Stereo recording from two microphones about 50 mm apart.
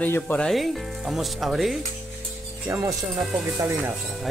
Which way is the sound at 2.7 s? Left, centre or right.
Right.